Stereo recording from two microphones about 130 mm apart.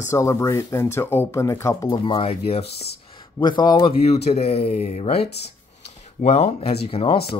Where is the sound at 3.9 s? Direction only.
55° left (ahead or behind).